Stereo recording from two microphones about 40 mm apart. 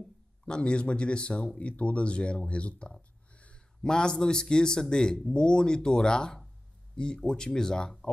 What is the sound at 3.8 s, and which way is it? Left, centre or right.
A man's voice, centre.